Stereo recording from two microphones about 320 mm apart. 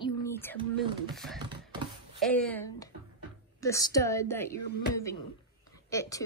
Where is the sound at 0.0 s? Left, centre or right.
Centre.